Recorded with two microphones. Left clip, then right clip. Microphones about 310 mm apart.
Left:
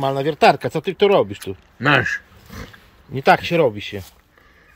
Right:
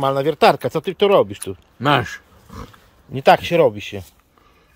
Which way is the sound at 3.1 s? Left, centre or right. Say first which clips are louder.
Right 2 dB; centre.